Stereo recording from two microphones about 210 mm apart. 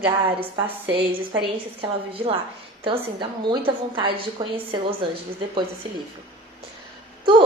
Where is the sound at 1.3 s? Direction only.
25° right (ahead or behind).